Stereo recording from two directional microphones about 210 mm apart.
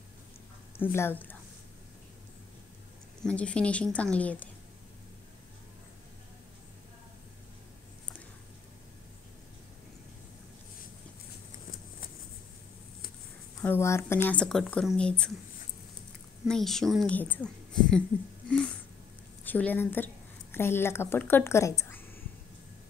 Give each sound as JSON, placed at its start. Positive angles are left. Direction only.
{"t": 0.9, "sound": "a woman's voice", "side_deg": 10}
{"t": 3.2, "sound": "speech", "side_deg": 5}
{"t": 13.6, "sound": "speech", "side_deg": 10}
{"t": 16.4, "sound": "a woman's voice", "side_deg": 0}